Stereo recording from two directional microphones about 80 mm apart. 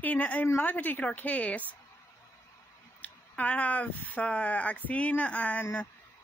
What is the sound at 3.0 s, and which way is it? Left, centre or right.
Speech, centre.